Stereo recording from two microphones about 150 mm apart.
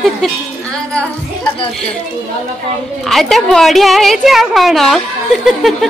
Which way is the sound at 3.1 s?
Centre (ahead or behind).